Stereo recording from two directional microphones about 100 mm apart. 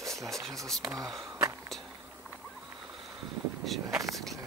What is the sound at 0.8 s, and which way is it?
Speech, 15° right (ahead or behind).